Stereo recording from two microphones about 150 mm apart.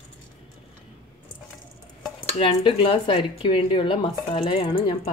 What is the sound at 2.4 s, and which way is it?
Speech, 35° left (ahead or behind).